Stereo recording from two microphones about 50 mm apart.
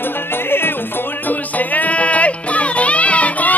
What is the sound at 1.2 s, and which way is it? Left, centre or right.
Music, left.